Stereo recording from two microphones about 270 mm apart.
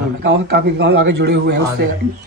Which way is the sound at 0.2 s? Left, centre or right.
Right.